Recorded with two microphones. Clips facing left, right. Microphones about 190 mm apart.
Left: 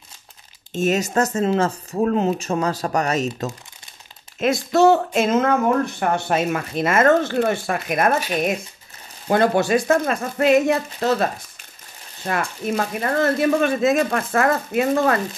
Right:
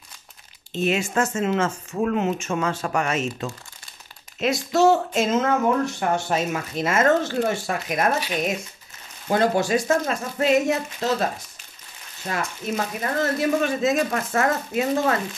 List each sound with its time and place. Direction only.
0.7 s speech: 40° left (ahead or behind)
4.4 s speech: 55° left (ahead or behind)
12.3 s speech: 60° left (ahead or behind)